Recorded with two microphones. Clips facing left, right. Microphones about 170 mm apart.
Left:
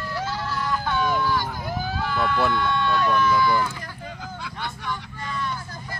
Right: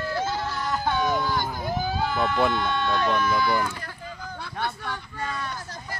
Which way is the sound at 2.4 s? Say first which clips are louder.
Even; 20° right (ahead or behind).